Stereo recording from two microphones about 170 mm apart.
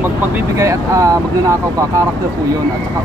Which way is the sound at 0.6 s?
15° right (ahead or behind).